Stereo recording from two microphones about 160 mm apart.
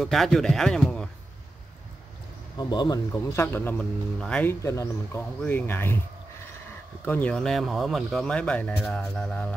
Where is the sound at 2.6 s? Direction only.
25° left (ahead or behind).